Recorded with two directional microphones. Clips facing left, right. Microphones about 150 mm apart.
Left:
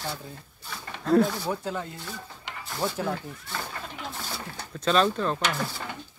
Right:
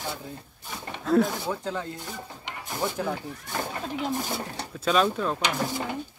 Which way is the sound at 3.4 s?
20° right (ahead or behind).